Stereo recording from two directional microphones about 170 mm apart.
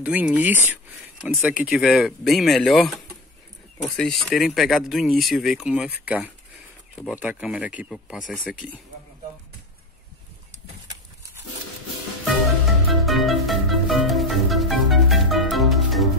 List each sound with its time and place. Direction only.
0.0 s speech: 10° right (ahead or behind)
12.3 s music: centre (ahead or behind)